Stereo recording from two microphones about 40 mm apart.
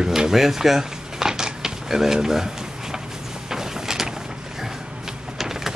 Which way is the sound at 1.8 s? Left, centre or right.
Centre.